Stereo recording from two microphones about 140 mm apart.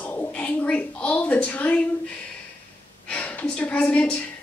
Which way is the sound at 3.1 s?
10° left (ahead or behind).